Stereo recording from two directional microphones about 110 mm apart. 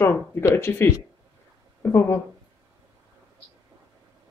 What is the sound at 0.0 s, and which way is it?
Speech, 25° left (ahead or behind).